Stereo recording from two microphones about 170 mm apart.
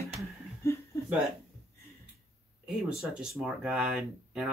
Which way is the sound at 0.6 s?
15° left (ahead or behind).